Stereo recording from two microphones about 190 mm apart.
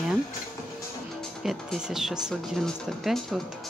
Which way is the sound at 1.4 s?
Centre (ahead or behind).